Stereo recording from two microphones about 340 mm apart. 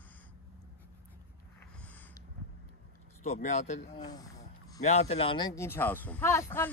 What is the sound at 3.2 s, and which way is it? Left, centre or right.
Speech, centre.